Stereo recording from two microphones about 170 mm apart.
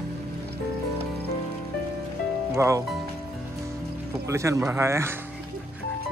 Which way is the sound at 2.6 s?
15° right (ahead or behind).